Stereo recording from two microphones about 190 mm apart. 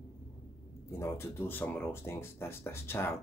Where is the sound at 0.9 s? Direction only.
15° left (ahead or behind).